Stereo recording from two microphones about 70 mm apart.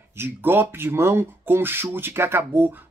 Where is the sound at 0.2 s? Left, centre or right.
Right.